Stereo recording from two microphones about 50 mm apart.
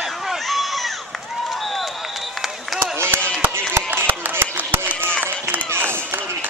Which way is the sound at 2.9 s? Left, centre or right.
Right.